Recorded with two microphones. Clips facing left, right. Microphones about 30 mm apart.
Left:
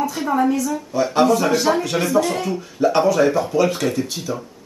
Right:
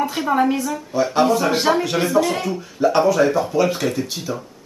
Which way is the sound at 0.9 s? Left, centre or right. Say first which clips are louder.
Left 1 dB; centre.